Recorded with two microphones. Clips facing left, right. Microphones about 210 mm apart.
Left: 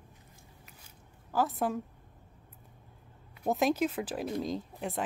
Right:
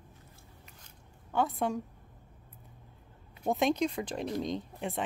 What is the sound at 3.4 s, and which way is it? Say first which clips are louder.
Speech: even; centre (ahead or behind).